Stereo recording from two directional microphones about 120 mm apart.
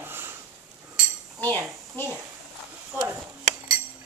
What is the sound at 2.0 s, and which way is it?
Speech, 20° left (ahead or behind).